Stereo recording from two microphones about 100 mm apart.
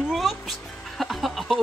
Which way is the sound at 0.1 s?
Centre (ahead or behind).